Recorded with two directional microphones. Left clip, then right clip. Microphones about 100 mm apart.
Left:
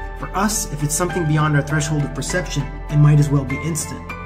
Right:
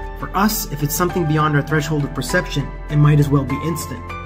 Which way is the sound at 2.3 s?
40° right (ahead or behind).